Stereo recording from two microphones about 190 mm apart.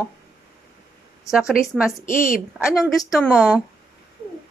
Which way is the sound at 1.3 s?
5° right (ahead or behind).